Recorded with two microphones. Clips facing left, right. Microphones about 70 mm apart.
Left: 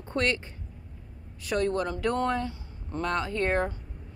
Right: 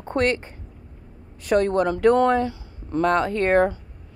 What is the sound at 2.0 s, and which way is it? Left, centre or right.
Speech, right.